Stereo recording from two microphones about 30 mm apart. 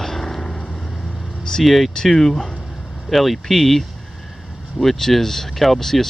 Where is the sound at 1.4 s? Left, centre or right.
Left.